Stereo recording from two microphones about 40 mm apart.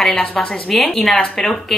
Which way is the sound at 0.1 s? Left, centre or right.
Left.